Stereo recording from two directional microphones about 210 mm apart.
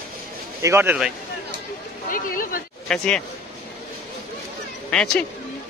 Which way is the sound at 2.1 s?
45° left (ahead or behind).